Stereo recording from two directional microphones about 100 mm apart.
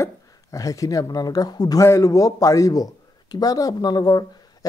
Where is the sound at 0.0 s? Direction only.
35° left (ahead or behind).